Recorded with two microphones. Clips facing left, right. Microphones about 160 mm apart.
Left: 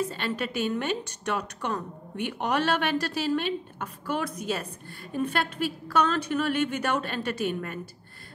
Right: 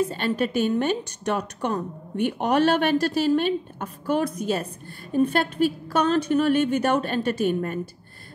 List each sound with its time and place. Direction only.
0.1 s a woman's voice: 45° right (ahead or behind)